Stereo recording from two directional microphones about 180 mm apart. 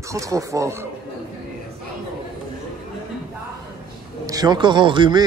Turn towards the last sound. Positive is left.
turn(degrees=-25)  # may be behind; listen again after turning